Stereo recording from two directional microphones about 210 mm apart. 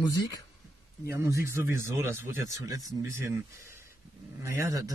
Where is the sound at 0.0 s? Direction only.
15° left (ahead or behind).